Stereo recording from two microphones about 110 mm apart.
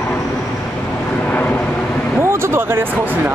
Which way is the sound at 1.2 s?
15° left (ahead or behind).